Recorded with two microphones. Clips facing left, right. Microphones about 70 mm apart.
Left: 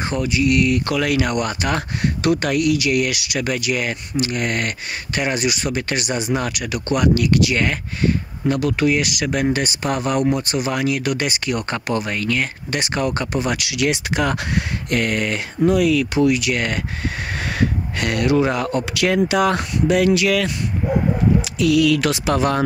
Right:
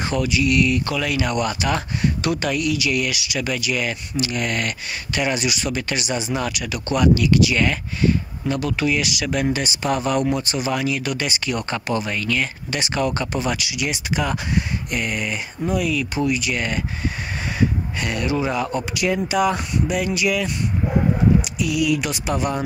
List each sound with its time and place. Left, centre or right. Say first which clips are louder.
0.0 s speech: left 1 dB; left
16.3 s speech: left 4 dB; left
18.9 s speech: left 3 dB; left
21.8 s speech: left 4 dB; left